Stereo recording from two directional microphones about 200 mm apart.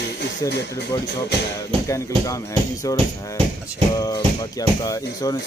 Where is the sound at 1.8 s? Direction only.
15° left (ahead or behind).